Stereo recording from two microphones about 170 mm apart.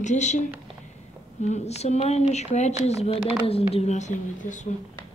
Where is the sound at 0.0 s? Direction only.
45° left (ahead or behind).